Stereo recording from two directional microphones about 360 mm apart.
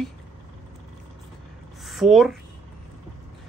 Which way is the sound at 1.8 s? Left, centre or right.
Centre.